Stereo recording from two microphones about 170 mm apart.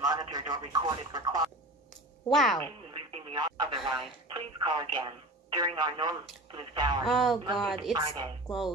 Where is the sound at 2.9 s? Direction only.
35° right (ahead or behind).